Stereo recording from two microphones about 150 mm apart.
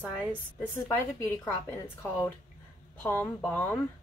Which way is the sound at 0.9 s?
20° left (ahead or behind).